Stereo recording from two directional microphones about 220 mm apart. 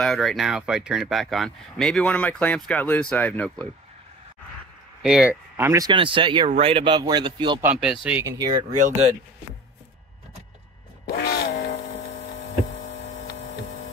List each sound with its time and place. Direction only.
0.0 s speech: centre (ahead or behind)
5.0 s speech: 5° right (ahead or behind); by 7.6 s 20° right (ahead or behind)
7.6 s speech: 5° right (ahead or behind)
11.1 s a sound: 50° left (ahead or behind)